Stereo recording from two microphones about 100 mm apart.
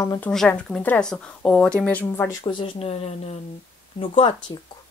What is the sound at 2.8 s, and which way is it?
Speech, 90° left.